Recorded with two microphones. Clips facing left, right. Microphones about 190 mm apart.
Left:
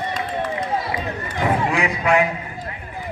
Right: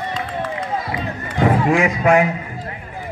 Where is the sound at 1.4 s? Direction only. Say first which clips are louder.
Right 5 dB; 45° right (ahead or behind).